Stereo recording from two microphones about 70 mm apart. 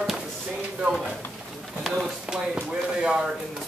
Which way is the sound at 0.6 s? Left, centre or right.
Centre.